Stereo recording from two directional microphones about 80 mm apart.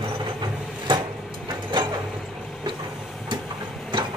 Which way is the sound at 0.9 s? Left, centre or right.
Right.